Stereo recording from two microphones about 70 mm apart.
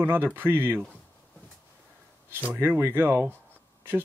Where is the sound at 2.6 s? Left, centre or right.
Right.